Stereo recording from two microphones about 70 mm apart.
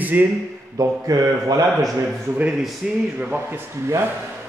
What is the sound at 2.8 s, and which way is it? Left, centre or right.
Speech, centre.